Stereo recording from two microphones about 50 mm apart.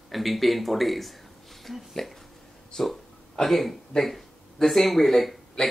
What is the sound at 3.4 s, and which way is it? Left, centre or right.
Speech, centre.